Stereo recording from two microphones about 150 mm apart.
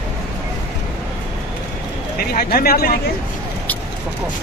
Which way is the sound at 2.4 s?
90° left.